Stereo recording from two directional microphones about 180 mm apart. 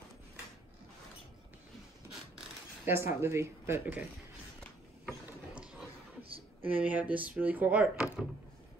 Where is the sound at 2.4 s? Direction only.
10° right (ahead or behind).